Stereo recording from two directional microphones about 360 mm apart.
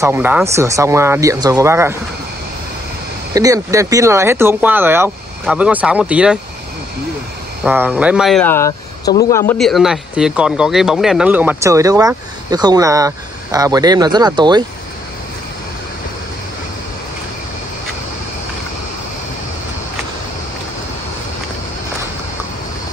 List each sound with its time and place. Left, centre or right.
0.0 s speech: centre
3.3 s speech: centre
7.6 s speech: centre